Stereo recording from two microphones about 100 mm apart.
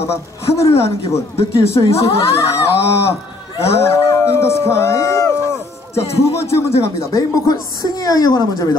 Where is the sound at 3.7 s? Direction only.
30° left (ahead or behind).